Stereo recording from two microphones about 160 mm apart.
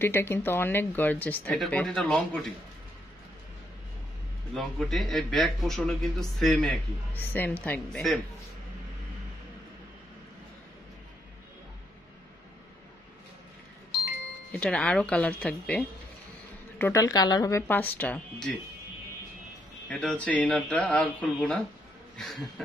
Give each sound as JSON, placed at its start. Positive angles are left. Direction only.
{"t": 0.0, "sound": "speech", "side_deg": 15}
{"t": 4.6, "sound": "a man's voice", "side_deg": 0}
{"t": 14.5, "sound": "speech", "side_deg": 5}
{"t": 19.9, "sound": "speech", "side_deg": 5}
{"t": 22.1, "sound": "a sound", "side_deg": 0}